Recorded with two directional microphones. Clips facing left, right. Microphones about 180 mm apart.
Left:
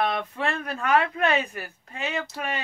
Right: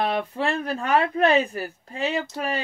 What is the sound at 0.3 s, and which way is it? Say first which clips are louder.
Speech: right 4 dB; 30° right (ahead or behind).